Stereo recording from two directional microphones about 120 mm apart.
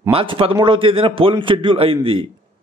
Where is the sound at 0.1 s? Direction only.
50° right (ahead or behind).